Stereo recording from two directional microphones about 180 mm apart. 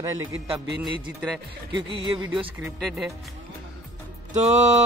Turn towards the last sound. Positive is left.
turn(degrees=-40)  # may be behind; listen again after turning